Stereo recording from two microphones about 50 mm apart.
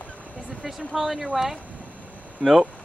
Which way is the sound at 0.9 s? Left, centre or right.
Centre.